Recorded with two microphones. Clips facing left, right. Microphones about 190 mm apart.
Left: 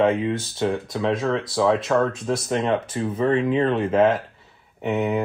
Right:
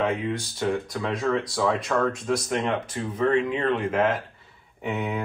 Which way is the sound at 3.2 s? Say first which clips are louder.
Left 3 dB; 30° left (ahead or behind).